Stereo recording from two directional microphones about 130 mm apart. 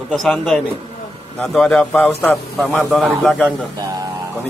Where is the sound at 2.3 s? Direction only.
Centre (ahead or behind).